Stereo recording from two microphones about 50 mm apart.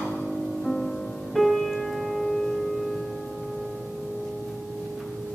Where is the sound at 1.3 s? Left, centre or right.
Centre.